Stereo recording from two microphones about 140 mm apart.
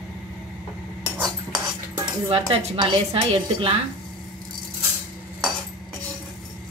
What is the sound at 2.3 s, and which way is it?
A woman's voice, 40° right (ahead or behind).